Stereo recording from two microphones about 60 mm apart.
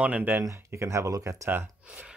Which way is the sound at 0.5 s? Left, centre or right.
Right.